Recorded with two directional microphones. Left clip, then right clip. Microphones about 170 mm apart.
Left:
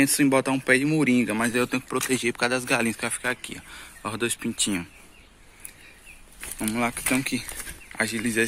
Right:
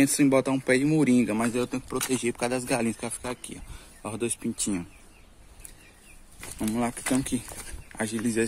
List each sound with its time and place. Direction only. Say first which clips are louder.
0.0 s speech: left 1 dB; 10° right (ahead or behind)
6.4 s speech: left 3 dB; 10° right (ahead or behind)